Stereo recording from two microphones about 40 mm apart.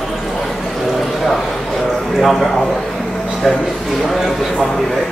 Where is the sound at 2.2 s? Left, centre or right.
Centre.